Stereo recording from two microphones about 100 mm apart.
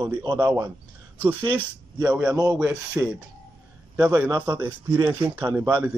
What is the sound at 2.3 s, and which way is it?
Speech, 40° right (ahead or behind).